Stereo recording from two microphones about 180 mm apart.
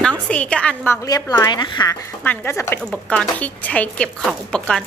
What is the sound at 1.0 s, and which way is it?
A woman's voice, 20° left (ahead or behind).